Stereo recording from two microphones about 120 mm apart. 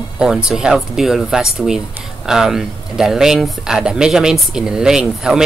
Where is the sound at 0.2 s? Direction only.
5° right (ahead or behind).